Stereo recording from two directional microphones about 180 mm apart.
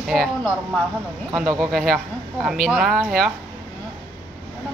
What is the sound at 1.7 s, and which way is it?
A woman's voice, 5° left (ahead or behind).